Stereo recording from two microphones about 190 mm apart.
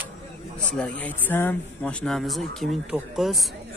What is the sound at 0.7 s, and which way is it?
Speech, 5° left (ahead or behind).